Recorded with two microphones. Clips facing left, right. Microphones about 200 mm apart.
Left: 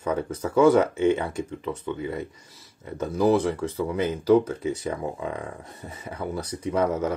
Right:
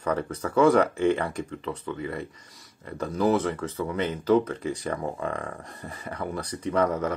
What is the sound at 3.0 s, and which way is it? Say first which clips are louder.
Speech: left 3 dB; 10° left (ahead or behind).